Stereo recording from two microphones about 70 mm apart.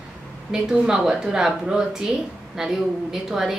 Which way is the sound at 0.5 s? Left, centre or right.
Centre.